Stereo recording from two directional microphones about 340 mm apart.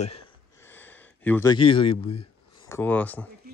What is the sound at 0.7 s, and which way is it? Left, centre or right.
Speech, centre.